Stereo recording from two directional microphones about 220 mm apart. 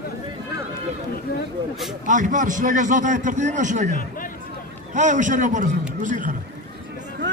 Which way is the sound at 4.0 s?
40° left (ahead or behind).